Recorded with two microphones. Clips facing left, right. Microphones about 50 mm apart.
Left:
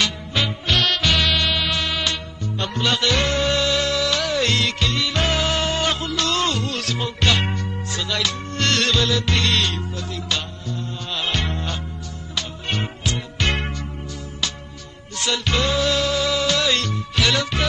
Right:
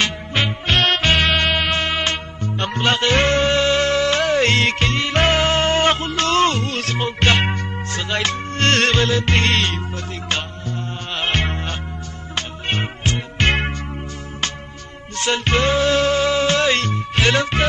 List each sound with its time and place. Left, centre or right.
0.0 s music: right
15.1 s music: right